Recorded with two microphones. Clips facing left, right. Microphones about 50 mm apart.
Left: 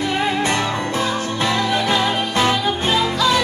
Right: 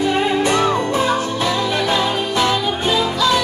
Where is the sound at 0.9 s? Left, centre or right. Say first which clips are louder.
Right 4 dB; right.